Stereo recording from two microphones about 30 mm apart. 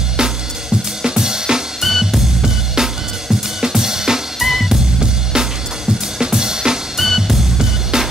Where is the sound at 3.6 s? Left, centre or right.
Centre.